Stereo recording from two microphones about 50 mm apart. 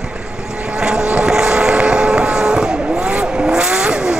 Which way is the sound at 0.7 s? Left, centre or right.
Centre.